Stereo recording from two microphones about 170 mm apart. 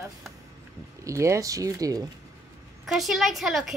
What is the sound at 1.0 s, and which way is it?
Speech, 20° right (ahead or behind).